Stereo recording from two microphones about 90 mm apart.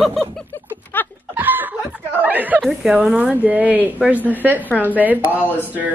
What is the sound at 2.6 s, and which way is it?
Speech, 5° right (ahead or behind).